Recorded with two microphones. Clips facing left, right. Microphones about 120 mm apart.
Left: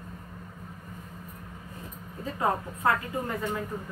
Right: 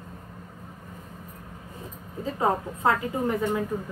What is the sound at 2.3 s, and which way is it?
A woman's voice, 20° right (ahead or behind).